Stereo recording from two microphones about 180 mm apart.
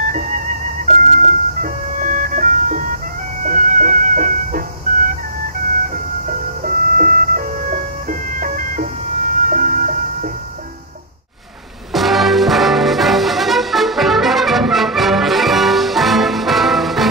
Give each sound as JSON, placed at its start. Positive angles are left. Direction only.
{"t": 0.8, "sound": "music", "side_deg": -45}
{"t": 6.2, "sound": "music", "side_deg": -50}
{"t": 11.9, "sound": "music", "side_deg": 0}